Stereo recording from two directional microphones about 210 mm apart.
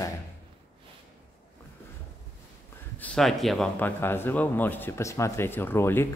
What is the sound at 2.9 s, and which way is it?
Speech, 5° left (ahead or behind).